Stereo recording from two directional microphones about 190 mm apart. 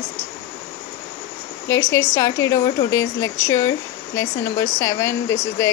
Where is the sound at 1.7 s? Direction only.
15° left (ahead or behind).